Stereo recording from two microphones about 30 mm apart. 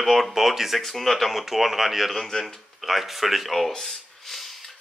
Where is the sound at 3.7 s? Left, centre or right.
Left.